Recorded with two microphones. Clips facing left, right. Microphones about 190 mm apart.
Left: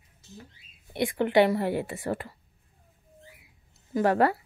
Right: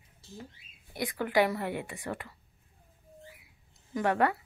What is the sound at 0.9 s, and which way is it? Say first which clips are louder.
A woman's voice: left 6 dB; 25° left (ahead or behind).